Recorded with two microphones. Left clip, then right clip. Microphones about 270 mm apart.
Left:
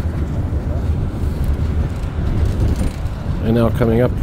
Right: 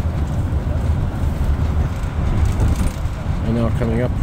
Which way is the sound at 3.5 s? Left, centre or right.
Left.